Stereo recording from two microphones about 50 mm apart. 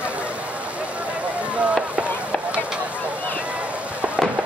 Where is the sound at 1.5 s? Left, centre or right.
Right.